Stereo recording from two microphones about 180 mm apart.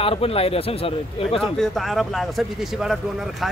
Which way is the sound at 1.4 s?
Centre (ahead or behind).